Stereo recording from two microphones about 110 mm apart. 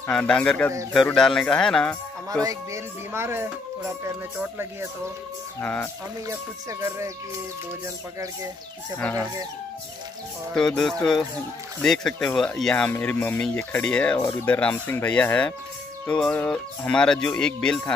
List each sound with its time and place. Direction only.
0.1 s speech: 10° left (ahead or behind)
2.4 s speech: 25° right (ahead or behind)
5.6 s speech: 20° left (ahead or behind)
6.2 s speech: 25° right (ahead or behind)
9.0 s speech: 15° left (ahead or behind)
10.5 s speech: 5° left (ahead or behind)